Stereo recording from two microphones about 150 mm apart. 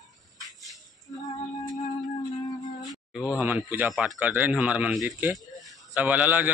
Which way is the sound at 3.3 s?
10° right (ahead or behind).